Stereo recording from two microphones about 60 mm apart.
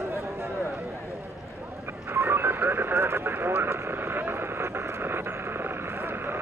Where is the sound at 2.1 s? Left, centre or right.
Right.